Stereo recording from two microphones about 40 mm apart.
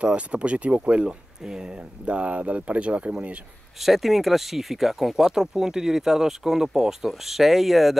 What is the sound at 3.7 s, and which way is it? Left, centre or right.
Speech, centre.